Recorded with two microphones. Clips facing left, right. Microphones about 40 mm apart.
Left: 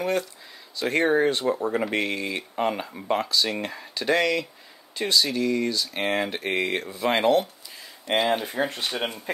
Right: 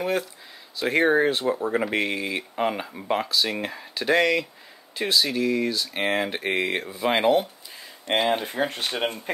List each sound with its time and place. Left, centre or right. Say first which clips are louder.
0.0 s speech: even; centre
8.1 s speech: even; right
8.6 s speech: even; centre